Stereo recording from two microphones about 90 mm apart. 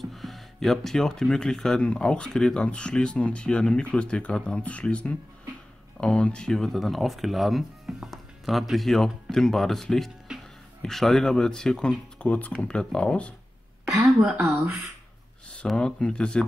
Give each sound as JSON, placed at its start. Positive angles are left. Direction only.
{"t": 0.0, "sound": "speech", "side_deg": 0}
{"t": 13.9, "sound": "speech", "side_deg": -20}
{"t": 15.5, "sound": "speech", "side_deg": 10}